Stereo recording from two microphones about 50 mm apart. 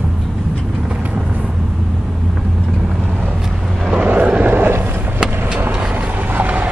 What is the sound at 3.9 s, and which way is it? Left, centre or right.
Vehicle, right.